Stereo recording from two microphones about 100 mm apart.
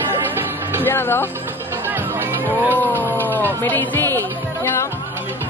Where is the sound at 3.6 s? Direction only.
20° left (ahead or behind).